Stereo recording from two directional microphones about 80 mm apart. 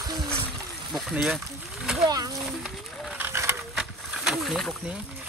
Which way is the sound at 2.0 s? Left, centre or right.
Right.